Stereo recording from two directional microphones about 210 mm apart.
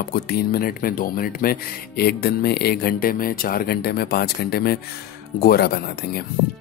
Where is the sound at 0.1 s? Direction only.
50° left (ahead or behind).